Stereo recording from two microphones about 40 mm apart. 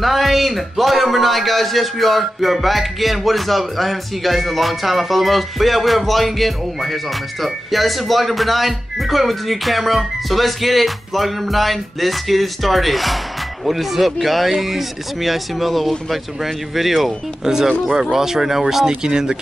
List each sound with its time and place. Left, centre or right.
0.0 s a man's voice: centre
18.9 s speech: centre